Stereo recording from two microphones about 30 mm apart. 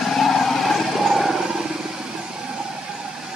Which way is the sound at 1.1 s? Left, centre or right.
Centre.